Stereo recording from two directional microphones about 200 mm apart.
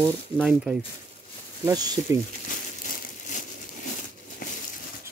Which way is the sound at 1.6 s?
20° right (ahead or behind).